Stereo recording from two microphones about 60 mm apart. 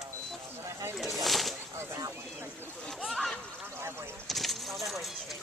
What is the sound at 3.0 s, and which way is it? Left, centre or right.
Speech, centre.